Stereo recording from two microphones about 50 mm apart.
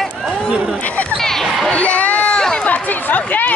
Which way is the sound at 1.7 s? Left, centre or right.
Left.